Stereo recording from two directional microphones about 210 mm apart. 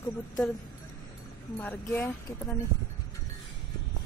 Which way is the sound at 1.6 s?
5° left (ahead or behind).